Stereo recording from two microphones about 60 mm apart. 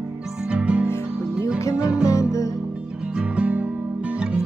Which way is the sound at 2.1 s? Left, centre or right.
Left.